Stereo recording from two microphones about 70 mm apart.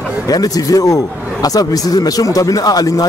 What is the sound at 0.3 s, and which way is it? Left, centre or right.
A man's voice, left.